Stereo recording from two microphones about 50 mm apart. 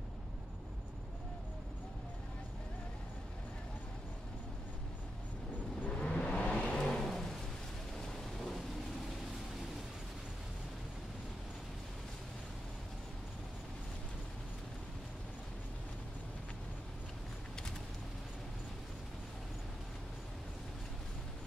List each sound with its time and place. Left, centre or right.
5.9 s vehicle: left
6.5 s vehicle: centre